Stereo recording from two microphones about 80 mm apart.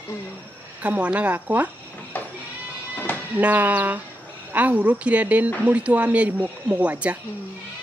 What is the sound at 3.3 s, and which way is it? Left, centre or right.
Speech, right.